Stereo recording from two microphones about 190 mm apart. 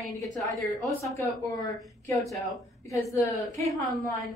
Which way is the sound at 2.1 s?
Centre (ahead or behind).